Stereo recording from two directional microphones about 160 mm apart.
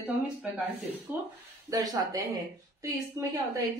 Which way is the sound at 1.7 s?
25° right (ahead or behind).